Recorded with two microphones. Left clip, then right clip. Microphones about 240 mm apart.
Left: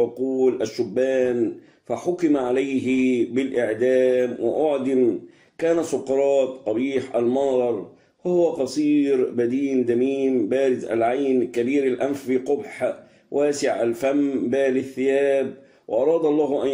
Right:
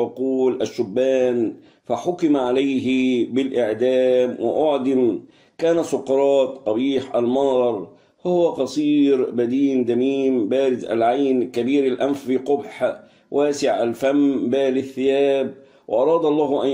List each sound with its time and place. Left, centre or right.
0.0 s speech: right